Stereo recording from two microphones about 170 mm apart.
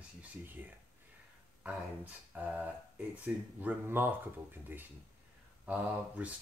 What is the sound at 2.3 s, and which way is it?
Speech, 10° right (ahead or behind).